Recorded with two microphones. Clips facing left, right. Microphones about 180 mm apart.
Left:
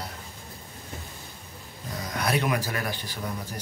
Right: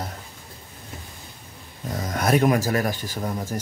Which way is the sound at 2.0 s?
45° right (ahead or behind).